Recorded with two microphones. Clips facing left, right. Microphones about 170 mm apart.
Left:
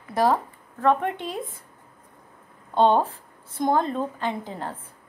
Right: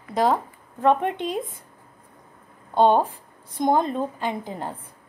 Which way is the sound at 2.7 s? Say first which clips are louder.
Right 1 dB; 10° right (ahead or behind).